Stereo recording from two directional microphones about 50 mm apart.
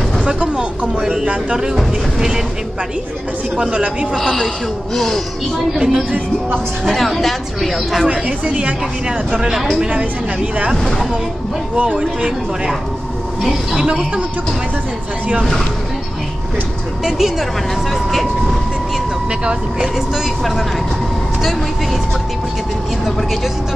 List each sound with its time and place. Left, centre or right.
0.2 s speech: right
1.2 s speech: right
2.1 s speech: centre
3.7 s speech: right
4.1 s speech: centre
5.7 s speech: centre
6.8 s speech: centre
8.1 s speech: right
10.8 s speech: centre
11.7 s speech: right
13.4 s speech: centre
17.0 s speech: centre